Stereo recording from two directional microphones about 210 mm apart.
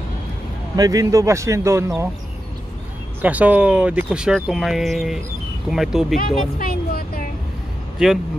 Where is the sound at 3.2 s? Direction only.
5° right (ahead or behind).